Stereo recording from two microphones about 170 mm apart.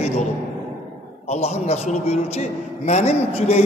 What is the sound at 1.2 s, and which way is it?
Speech, 40° left (ahead or behind).